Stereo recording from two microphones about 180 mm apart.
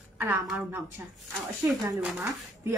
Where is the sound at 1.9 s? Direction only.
5° right (ahead or behind).